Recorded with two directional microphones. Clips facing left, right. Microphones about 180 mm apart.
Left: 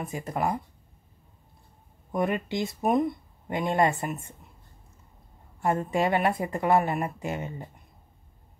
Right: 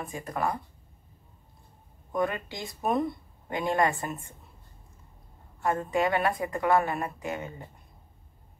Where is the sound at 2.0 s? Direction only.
20° left (ahead or behind).